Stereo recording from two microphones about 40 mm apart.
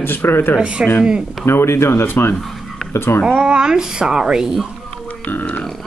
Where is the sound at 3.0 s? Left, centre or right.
Left.